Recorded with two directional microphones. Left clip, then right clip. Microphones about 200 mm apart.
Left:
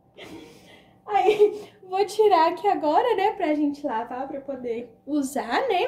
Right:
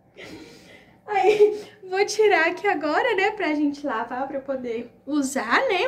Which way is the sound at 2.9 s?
5° right (ahead or behind).